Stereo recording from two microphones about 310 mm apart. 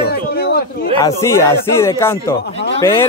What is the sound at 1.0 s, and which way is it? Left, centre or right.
Speech, centre.